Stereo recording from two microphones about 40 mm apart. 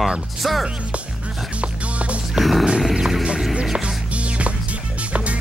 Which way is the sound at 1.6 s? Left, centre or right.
Right.